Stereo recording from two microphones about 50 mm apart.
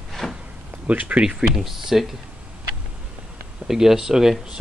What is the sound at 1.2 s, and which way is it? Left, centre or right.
Speech, centre.